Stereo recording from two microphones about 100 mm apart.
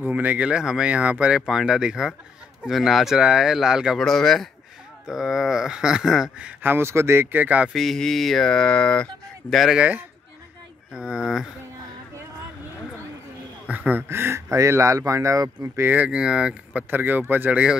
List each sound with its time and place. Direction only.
0.0 s speech: 15° right (ahead or behind)
7.7 s speech: centre (ahead or behind)
9.8 s speech: 15° right (ahead or behind)
13.7 s speech: 15° right (ahead or behind)